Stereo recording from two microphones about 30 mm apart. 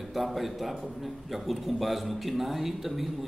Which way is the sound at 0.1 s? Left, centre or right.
Centre.